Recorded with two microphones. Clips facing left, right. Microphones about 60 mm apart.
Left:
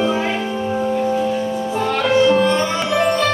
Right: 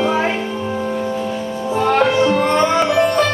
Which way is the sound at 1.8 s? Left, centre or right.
Right.